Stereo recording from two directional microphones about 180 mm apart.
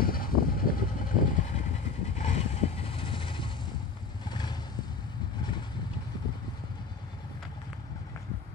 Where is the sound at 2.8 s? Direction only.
30° left (ahead or behind).